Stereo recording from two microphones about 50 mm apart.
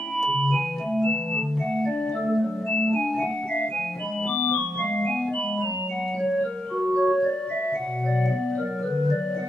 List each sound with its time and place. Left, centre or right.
0.3 s organ: centre
4.4 s organ: left
7.0 s music: centre